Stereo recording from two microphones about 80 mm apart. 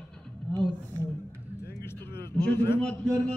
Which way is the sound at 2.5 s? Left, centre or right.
Left.